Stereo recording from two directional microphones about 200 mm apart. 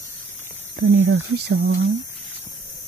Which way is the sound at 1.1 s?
55° right (ahead or behind).